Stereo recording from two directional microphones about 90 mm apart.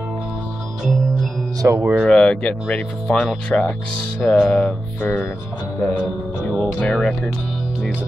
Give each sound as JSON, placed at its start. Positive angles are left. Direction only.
{"t": 1.6, "sound": "speech", "side_deg": -30}
{"t": 2.0, "sound": "speech", "side_deg": 10}
{"t": 6.5, "sound": "speech", "side_deg": 10}